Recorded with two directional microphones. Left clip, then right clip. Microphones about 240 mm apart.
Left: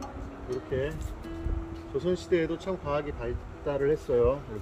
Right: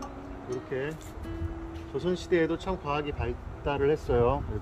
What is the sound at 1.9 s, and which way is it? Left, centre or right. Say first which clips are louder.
Speech: even; centre.